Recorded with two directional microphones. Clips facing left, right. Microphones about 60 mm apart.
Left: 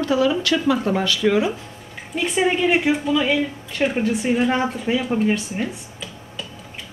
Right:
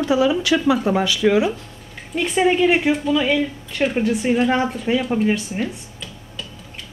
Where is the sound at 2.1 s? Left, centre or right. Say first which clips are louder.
Right 3 dB; centre.